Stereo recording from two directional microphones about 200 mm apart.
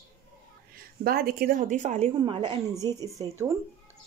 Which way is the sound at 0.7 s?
45° right (ahead or behind).